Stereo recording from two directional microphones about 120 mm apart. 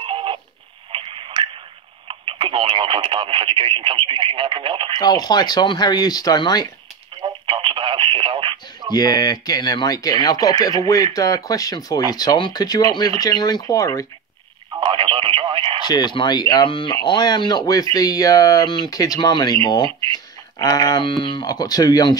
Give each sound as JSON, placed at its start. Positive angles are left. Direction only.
{"t": 0.0, "sound": "a sound", "side_deg": -45}
{"t": 0.9, "sound": "tick", "side_deg": -45}
{"t": 2.0, "sound": "speech", "side_deg": -45}
{"t": 4.9, "sound": "speech", "side_deg": 35}
{"t": 7.2, "sound": "radio", "side_deg": -45}
{"t": 8.9, "sound": "speech", "side_deg": 35}
{"t": 14.9, "sound": "radio", "side_deg": -50}
{"t": 15.8, "sound": "speech", "side_deg": 35}